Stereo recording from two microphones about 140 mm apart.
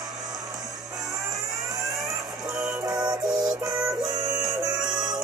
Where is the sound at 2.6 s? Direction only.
5° right (ahead or behind).